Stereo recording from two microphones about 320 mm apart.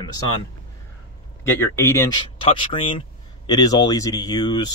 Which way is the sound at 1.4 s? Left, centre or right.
Centre.